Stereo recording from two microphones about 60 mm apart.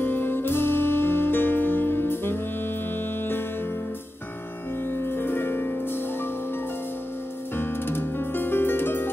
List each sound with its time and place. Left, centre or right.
0.0 s music: left
4.9 s music: left
7.5 s music: left